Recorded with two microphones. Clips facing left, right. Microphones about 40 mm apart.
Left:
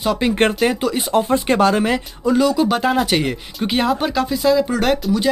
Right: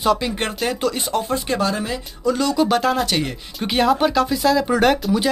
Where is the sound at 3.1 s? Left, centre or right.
Left.